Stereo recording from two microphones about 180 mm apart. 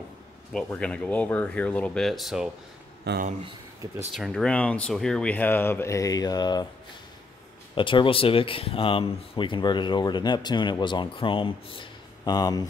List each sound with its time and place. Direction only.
0.5 s speech: 5° left (ahead or behind)
3.1 s speech: 65° right (ahead or behind)
4.1 s speech: centre (ahead or behind); by 6.7 s 25° left (ahead or behind)
7.7 s speech: 30° left (ahead or behind)